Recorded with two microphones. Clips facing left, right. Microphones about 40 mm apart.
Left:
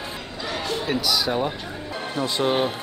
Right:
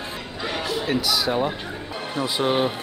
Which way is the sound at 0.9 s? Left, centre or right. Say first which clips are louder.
Right 1 dB; centre.